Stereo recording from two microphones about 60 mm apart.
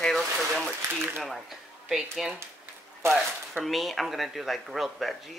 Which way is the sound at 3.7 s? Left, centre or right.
Centre.